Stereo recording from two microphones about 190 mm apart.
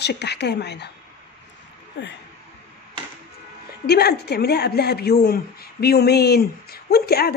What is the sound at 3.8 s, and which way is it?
A woman's voice, 55° left (ahead or behind).